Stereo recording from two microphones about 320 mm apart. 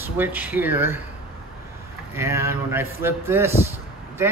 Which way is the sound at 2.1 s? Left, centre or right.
Centre.